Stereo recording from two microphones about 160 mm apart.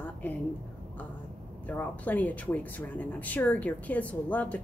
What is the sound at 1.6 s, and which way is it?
Speech, 10° left (ahead or behind).